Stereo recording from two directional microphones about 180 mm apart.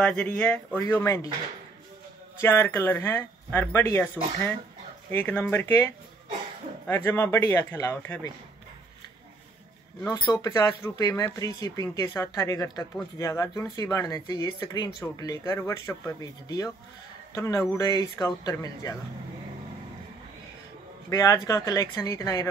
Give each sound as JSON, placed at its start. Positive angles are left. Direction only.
{"t": 0.0, "sound": "speech", "side_deg": 5}
{"t": 2.4, "sound": "speech", "side_deg": 15}
{"t": 10.1, "sound": "speech", "side_deg": 25}
{"t": 21.1, "sound": "speech", "side_deg": 20}